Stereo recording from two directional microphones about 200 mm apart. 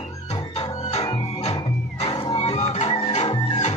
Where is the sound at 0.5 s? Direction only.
25° left (ahead or behind).